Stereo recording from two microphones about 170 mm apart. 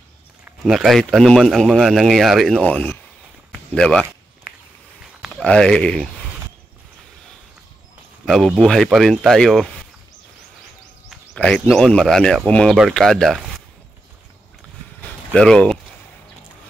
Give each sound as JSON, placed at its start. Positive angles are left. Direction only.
{"t": 0.5, "sound": "speech", "side_deg": 0}
{"t": 5.2, "sound": "speech", "side_deg": 5}
{"t": 8.3, "sound": "speech", "side_deg": 0}
{"t": 11.1, "sound": "speech", "side_deg": 5}
{"t": 15.0, "sound": "a sound", "side_deg": 5}